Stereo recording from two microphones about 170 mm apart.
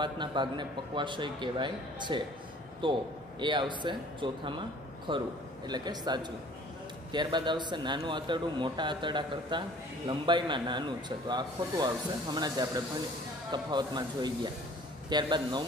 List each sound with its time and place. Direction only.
0.0 s a man's voice: 25° right (ahead or behind)